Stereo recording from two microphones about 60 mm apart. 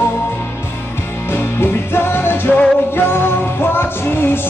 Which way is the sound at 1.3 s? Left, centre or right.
Left.